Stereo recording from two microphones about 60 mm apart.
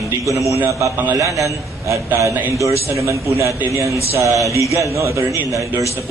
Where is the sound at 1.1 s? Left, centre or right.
Right.